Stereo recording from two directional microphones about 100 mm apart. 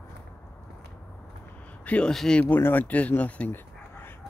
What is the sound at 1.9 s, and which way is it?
Speech, 10° left (ahead or behind).